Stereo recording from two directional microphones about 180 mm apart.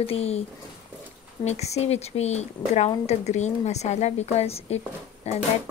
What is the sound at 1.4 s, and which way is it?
A woman's voice, 40° left (ahead or behind).